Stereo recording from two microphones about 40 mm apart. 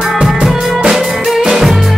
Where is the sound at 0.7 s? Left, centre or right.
Centre.